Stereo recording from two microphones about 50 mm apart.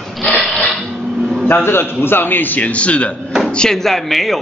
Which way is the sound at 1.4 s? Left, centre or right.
Left.